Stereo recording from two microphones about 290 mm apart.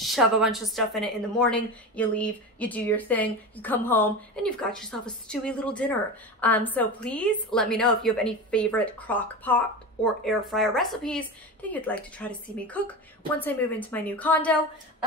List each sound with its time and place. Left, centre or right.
0.0 s a woman's voice: centre